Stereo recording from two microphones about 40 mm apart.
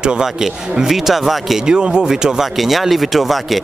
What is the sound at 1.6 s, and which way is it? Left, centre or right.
Speech, right.